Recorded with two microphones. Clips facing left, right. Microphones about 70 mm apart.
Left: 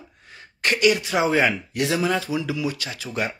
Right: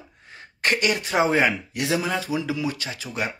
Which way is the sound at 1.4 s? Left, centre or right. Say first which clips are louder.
Left 1 dB; centre.